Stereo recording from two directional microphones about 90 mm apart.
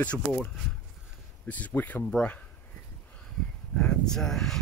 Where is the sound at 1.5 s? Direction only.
20° left (ahead or behind).